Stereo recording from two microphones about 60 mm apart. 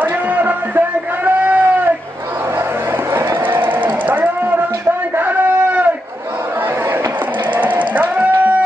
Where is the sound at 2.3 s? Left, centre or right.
Right.